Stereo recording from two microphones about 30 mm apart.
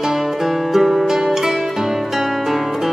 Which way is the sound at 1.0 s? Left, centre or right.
Centre.